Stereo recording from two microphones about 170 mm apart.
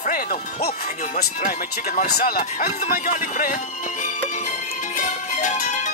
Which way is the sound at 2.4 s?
45° left (ahead or behind).